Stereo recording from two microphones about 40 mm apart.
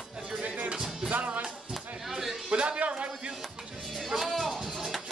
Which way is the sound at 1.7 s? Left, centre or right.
Centre.